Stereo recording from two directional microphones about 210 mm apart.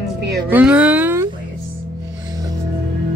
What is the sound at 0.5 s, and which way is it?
Speech, 5° right (ahead or behind).